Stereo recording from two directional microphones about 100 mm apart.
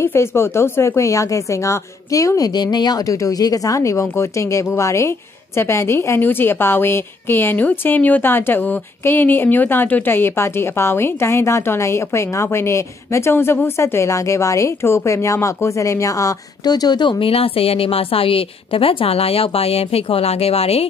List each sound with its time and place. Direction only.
0.0 s a woman's voice: 25° left (ahead or behind); by 17.2 s 45° left (ahead or behind)
17.2 s a woman's voice: 75° left (ahead or behind); by 20.8 s 90° left